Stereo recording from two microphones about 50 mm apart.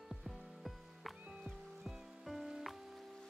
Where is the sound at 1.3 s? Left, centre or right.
Centre.